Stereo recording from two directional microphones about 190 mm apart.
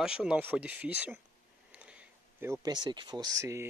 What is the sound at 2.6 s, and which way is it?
Speech, 20° right (ahead or behind).